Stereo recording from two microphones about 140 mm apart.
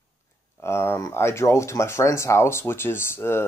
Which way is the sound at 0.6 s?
20° left (ahead or behind).